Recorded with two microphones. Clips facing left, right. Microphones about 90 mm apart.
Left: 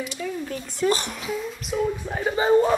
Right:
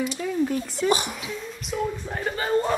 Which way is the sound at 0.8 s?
15° right (ahead or behind).